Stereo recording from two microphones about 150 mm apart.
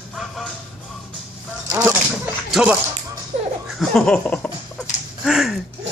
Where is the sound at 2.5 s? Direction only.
10° right (ahead or behind); by 4.8 s 10° left (ahead or behind).